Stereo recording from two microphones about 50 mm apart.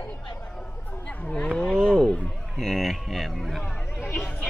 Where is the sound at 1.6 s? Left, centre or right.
Centre.